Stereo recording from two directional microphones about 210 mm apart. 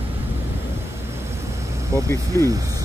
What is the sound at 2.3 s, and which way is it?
Speech, 15° right (ahead or behind).